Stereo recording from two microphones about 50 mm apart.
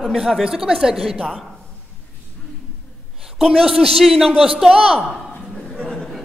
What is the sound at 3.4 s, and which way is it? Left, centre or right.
A man's voice, centre.